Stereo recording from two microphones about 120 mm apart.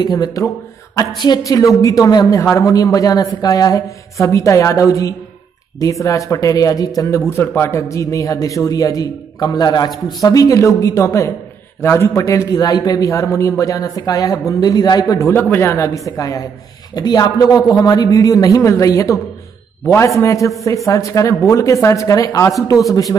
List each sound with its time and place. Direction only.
0.0 s a man's voice: 35° left (ahead or behind)